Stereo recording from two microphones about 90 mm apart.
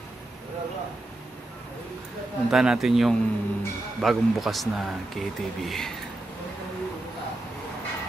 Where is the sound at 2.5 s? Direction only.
5° right (ahead or behind).